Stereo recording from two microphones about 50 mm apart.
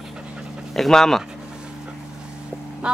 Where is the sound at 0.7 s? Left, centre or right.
Centre.